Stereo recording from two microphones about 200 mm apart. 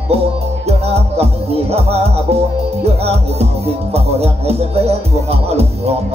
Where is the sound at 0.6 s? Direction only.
30° right (ahead or behind).